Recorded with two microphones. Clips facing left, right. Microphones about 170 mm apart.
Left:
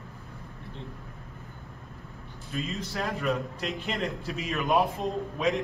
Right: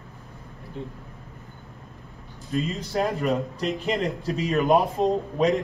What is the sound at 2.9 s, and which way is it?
Speech, 40° right (ahead or behind).